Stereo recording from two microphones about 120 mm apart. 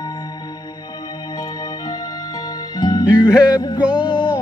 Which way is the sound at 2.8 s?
30° left (ahead or behind).